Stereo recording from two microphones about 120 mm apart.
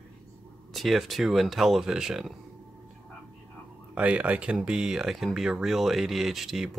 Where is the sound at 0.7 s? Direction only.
Centre (ahead or behind).